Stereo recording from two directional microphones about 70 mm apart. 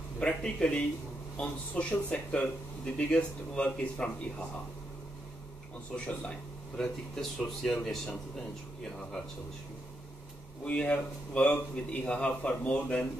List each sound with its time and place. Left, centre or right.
0.2 s speech: centre
5.9 s speech: centre
10.6 s speech: centre